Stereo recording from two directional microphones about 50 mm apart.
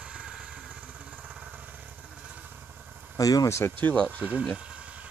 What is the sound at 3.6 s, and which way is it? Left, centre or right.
Speech, left.